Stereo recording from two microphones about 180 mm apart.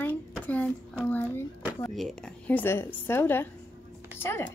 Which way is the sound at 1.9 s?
Centre (ahead or behind).